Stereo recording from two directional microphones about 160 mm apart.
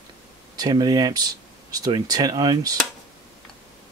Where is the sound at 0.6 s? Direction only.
25° right (ahead or behind).